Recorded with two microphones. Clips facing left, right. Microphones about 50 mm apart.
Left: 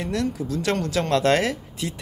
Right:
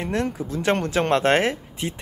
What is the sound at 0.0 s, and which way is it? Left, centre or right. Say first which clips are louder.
Speech: right 1 dB; right.